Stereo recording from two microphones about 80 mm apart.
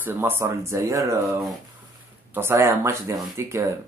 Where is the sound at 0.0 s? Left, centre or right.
Right.